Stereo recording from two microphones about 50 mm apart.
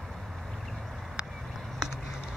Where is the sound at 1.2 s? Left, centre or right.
Centre.